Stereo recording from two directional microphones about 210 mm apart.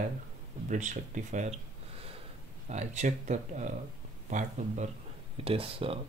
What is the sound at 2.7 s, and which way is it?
Speech, 35° right (ahead or behind).